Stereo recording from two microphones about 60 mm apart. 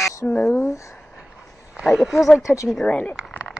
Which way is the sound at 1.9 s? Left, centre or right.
Centre.